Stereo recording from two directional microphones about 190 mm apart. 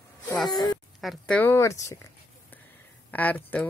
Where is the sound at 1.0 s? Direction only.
Centre (ahead or behind).